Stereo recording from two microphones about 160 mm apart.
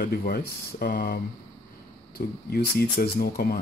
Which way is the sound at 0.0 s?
70° left (ahead or behind).